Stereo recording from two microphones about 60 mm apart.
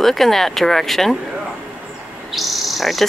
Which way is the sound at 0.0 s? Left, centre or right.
Centre.